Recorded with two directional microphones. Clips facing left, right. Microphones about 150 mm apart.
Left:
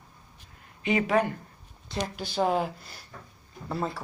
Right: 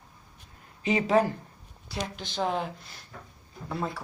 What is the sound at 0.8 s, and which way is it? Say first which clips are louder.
Speech: right 1 dB; 30° right (ahead or behind).